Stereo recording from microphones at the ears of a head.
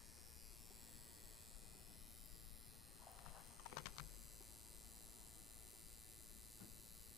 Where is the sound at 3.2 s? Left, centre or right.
Left.